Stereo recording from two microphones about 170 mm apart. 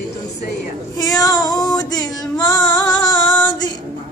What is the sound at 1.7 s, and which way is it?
Female singing, 25° left (ahead or behind).